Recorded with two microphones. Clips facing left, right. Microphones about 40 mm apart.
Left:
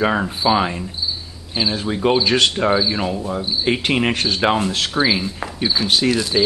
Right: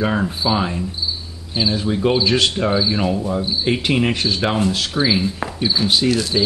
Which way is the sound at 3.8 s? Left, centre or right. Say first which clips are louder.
Even; centre.